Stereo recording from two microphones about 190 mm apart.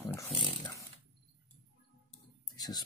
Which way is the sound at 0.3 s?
25° right (ahead or behind).